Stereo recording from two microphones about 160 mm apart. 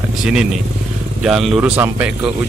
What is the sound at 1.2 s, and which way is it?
Speech, centre (ahead or behind).